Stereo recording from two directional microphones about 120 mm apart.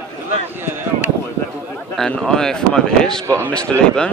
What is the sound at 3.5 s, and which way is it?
Speech, 5° left (ahead or behind).